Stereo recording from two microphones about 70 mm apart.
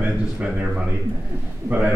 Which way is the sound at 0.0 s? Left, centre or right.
Centre.